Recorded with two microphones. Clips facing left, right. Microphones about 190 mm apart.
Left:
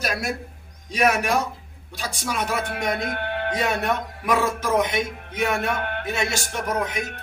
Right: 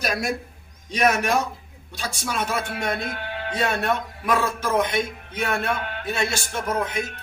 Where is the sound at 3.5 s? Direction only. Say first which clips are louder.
Right 2 dB; 15° left (ahead or behind).